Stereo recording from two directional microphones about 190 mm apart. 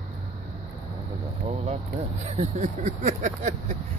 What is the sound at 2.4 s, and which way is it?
Speech, 40° right (ahead or behind).